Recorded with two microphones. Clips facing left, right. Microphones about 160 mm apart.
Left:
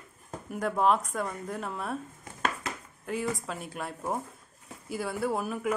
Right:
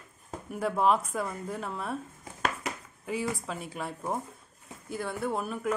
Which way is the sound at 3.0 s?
Centre (ahead or behind).